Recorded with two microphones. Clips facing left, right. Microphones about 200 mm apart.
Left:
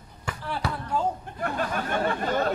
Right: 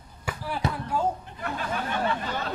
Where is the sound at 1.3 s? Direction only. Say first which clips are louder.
Left 3 dB; 50° left (ahead or behind).